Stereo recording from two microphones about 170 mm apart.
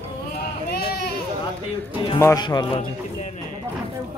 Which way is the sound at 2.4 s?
25° left (ahead or behind).